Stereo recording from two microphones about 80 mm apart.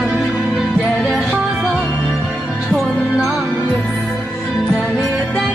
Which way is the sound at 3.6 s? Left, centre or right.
Centre.